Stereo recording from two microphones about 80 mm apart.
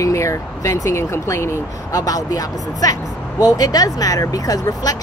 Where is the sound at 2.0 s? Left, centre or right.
Left.